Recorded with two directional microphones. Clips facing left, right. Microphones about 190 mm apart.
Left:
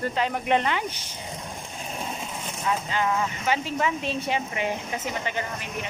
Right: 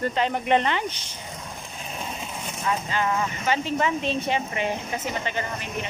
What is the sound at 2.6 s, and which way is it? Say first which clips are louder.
Speech: even; 10° left (ahead or behind).